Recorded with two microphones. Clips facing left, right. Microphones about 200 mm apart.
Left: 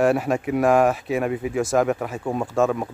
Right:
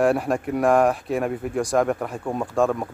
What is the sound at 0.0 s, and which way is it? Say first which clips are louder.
A man's voice: left 1 dB; centre (ahead or behind).